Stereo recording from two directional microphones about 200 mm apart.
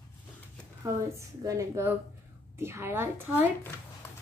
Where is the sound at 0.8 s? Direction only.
15° right (ahead or behind).